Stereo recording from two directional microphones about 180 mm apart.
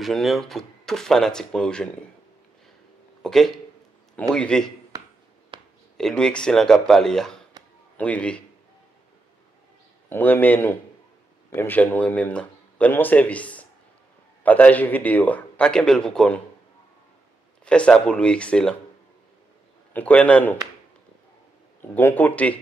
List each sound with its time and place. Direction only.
0.0 s speech: centre (ahead or behind)
3.2 s speech: centre (ahead or behind)
5.5 s a sound: 25° right (ahead or behind)
5.9 s speech: 5° left (ahead or behind)
7.6 s a sound: 20° right (ahead or behind)
8.0 s speech: 5° left (ahead or behind)
10.0 s speech: 10° left (ahead or behind)
17.6 s speech: 5° left (ahead or behind)
19.9 s speech: 10° left (ahead or behind)
21.9 s speech: 10° left (ahead or behind)